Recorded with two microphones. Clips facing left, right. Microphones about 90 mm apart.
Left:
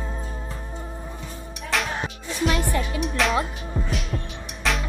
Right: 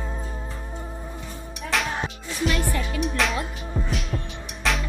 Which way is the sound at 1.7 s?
Centre (ahead or behind).